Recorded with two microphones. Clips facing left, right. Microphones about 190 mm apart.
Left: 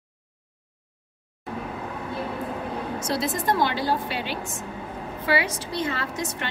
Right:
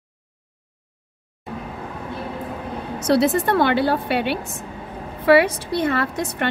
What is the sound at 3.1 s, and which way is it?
A woman's voice, 65° right (ahead or behind).